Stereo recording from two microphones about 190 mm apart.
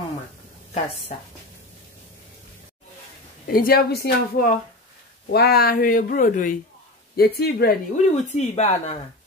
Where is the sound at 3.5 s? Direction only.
50° left (ahead or behind).